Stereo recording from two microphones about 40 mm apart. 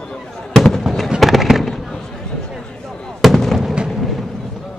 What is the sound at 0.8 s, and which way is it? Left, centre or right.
Fireworks, centre.